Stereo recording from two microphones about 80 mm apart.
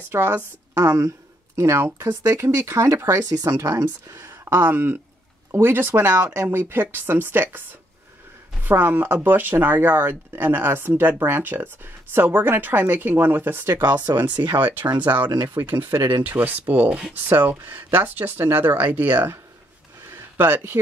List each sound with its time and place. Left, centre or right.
0.1 s speech: right
0.7 s speech: right
4.2 s speech: right
8.6 s speech: right
14.1 s speech: right
14.5 s speech: right
15.2 s speech: right
15.5 s speech: right
20.3 s speech: right